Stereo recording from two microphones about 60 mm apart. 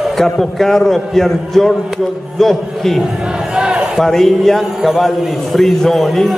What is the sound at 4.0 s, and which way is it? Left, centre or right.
Speech, centre.